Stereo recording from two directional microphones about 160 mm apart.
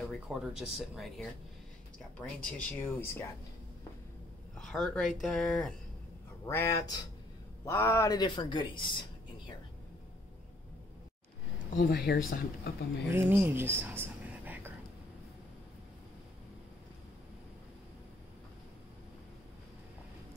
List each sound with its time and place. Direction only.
0.1 s speech: 5° right (ahead or behind)
4.6 s speech: 5° left (ahead or behind)
6.4 s speech: 15° left (ahead or behind)
11.8 s speech: 80° left
13.1 s speech: 15° right (ahead or behind)